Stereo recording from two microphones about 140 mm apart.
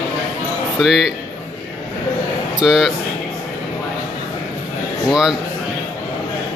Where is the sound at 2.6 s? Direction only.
5° right (ahead or behind).